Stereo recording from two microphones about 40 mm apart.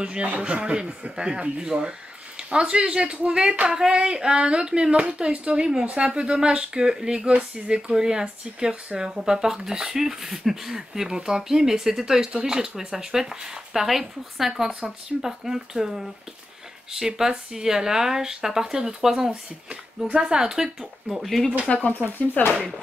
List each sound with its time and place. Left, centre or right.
0.0 s speech: right
12.3 s speech: right
21.7 s speech: left
22.4 s speech: left